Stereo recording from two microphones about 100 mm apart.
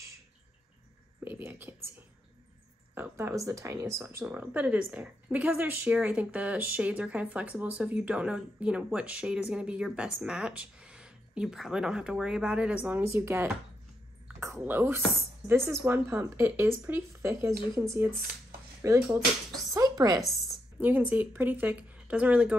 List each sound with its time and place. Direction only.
1.2 s speech: 20° right (ahead or behind)
2.9 s speech: 20° right (ahead or behind)
4.0 s speech: 15° right (ahead or behind)
13.0 s speech: 25° right (ahead or behind)
14.6 s speech: 20° right (ahead or behind)
19.7 s a sound: 40° right (ahead or behind)
20.8 s speech: 15° right (ahead or behind)